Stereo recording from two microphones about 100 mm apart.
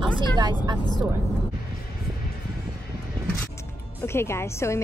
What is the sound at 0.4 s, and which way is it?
Speech, 50° right (ahead or behind).